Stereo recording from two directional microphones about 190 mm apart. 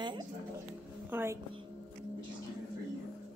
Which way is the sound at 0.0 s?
25° right (ahead or behind).